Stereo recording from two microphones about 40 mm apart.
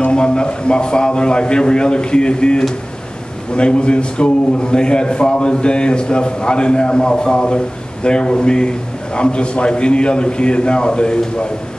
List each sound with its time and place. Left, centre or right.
0.1 s a man's voice: left